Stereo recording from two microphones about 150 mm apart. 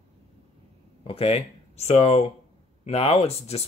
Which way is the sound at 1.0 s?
40° left (ahead or behind).